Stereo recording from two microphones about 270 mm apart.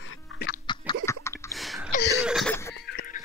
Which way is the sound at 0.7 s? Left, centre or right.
Centre.